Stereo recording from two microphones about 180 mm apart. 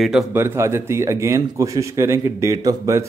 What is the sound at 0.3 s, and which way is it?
A man's voice, 15° right (ahead or behind).